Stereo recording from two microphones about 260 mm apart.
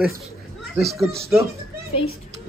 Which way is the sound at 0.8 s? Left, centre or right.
Right.